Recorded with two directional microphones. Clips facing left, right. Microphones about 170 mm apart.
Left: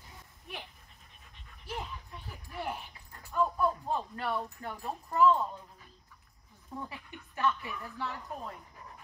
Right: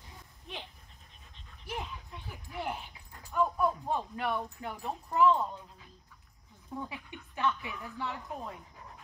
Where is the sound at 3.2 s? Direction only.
10° right (ahead or behind).